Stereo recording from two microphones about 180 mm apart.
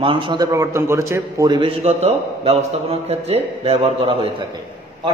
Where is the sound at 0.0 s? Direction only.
30° right (ahead or behind).